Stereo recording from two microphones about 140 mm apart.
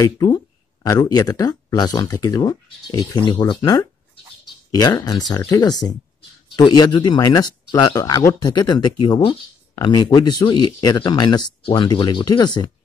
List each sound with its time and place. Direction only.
0.0 s speech: 25° left (ahead or behind)